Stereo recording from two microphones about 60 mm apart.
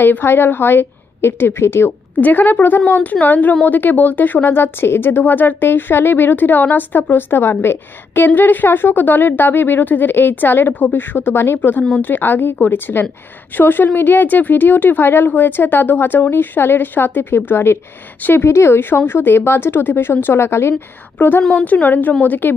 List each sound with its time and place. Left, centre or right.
0.0 s speech: left
2.1 s a woman's voice: left